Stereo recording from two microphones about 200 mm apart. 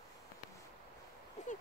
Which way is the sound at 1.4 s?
35° left (ahead or behind).